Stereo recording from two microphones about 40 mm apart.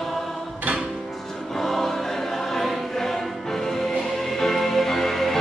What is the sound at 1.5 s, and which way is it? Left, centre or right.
Choir, centre.